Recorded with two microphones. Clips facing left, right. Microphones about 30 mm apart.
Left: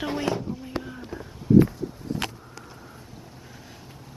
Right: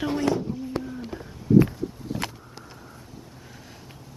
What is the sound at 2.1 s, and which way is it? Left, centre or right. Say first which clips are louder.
Vehicle: even; right.